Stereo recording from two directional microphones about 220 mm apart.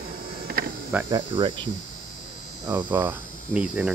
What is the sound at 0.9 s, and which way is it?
Speech, 15° right (ahead or behind).